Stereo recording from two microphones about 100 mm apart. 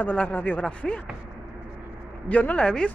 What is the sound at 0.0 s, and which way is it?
Speech, 15° left (ahead or behind).